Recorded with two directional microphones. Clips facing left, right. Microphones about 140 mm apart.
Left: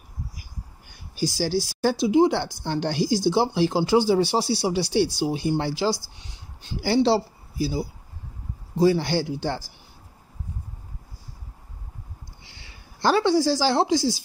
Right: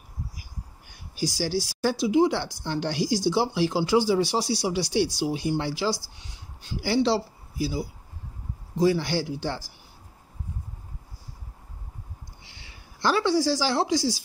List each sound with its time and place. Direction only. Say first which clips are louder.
1.6 s speech: left 2 dB; 25° left (ahead or behind)
13.0 s speech: left 3 dB; 30° left (ahead or behind)